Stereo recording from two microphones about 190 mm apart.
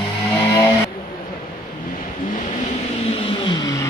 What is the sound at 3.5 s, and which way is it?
Vehicle, 25° left (ahead or behind).